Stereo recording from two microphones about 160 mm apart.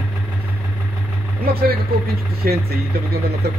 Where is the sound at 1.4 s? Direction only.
70° right (ahead or behind).